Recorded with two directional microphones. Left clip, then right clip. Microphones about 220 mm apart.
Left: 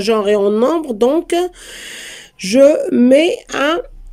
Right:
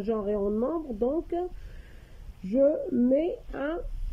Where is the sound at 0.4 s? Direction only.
30° left (ahead or behind).